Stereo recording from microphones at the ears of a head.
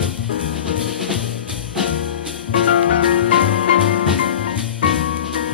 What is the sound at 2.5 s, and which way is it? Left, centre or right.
Music, left.